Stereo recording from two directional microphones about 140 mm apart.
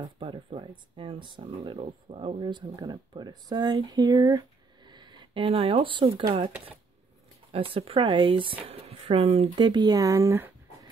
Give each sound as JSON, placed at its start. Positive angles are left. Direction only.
{"t": 0.0, "sound": "speech", "side_deg": -35}
{"t": 7.5, "sound": "speech", "side_deg": -40}